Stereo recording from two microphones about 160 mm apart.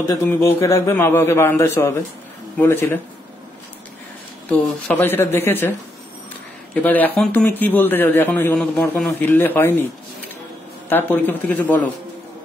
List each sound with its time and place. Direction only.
0.1 s a man's voice: 15° left (ahead or behind)
4.5 s a man's voice: 10° left (ahead or behind)
6.7 s a man's voice: 10° left (ahead or behind)
10.9 s a man's voice: 10° left (ahead or behind)